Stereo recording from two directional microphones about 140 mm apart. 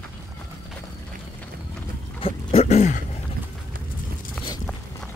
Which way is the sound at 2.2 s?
45° left (ahead or behind).